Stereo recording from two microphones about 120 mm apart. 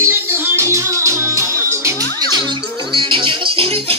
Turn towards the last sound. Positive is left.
turn(degrees=-50)  # may be behind; listen again after turning